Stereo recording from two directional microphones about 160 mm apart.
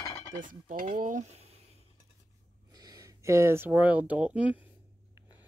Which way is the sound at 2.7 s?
25° right (ahead or behind).